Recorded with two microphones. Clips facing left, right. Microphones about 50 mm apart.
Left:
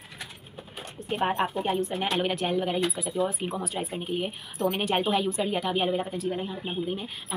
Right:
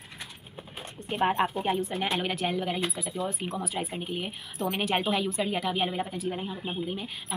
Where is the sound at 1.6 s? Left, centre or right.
Centre.